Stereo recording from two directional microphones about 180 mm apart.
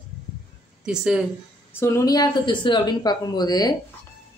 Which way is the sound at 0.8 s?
5° right (ahead or behind).